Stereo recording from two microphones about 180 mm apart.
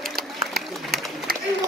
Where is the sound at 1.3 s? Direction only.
55° right (ahead or behind).